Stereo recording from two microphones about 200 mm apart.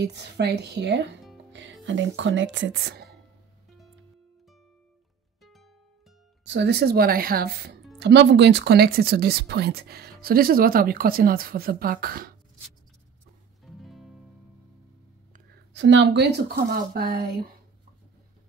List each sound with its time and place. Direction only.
0.0 s speech: 60° right (ahead or behind)
1.5 s music: 65° right (ahead or behind)
1.9 s speech: 65° right (ahead or behind)
5.4 s music: centre (ahead or behind)
6.4 s speech: 60° right (ahead or behind)
13.7 s music: centre (ahead or behind)
15.7 s speech: 65° right (ahead or behind)